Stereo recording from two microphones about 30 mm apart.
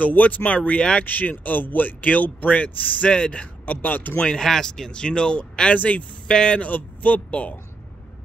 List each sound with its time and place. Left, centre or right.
0.0 s speech: left
0.5 s speech: left
1.0 s speech: left
3.1 s speech: left
3.6 s speech: left
4.4 s speech: centre
4.6 s speech: left
5.8 s speech: left
6.2 s speech: left
6.6 s speech: left